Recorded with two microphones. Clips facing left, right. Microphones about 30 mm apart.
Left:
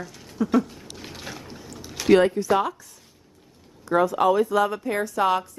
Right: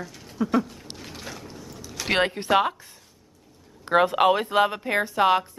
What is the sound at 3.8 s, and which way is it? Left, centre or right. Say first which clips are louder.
Speech: right 1 dB; right.